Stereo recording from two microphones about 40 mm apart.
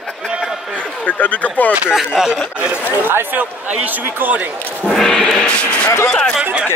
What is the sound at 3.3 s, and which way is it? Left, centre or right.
Speech, right.